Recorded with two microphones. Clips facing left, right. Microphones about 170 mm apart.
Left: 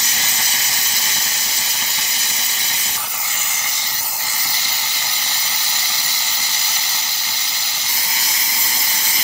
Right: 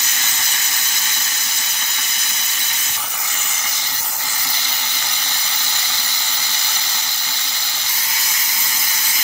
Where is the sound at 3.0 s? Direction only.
15° left (ahead or behind).